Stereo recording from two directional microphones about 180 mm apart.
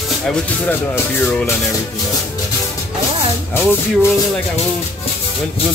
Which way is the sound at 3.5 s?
10° left (ahead or behind).